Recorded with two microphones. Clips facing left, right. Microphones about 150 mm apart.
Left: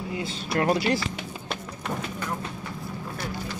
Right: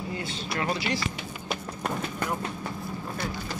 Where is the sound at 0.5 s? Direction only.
50° left (ahead or behind).